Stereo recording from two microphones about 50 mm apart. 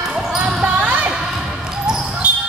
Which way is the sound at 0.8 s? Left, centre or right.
Right.